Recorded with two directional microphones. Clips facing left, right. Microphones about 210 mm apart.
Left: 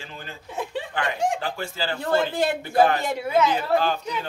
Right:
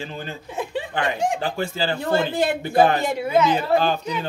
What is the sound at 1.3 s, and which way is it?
Speech, 25° right (ahead or behind).